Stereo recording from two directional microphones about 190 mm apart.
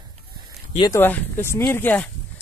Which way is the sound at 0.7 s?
15° left (ahead or behind).